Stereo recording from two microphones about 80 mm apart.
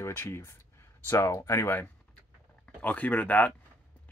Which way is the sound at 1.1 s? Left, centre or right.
Left.